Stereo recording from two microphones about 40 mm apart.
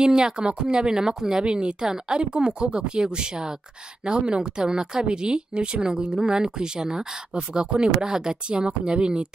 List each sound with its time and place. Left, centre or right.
0.0 s a woman's voice: right